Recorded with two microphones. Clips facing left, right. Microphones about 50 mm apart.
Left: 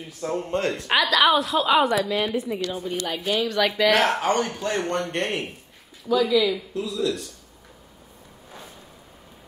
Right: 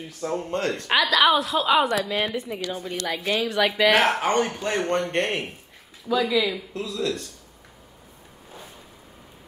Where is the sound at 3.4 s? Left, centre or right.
Centre.